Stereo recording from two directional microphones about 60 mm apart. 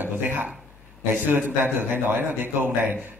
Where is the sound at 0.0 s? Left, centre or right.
Right.